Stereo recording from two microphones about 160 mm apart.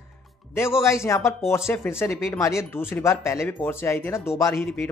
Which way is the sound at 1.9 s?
5° right (ahead or behind).